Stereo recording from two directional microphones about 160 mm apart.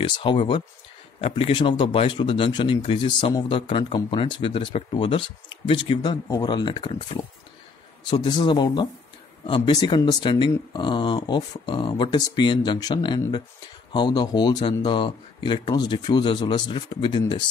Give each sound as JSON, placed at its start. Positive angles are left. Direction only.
{"t": 0.0, "sound": "speech", "side_deg": 30}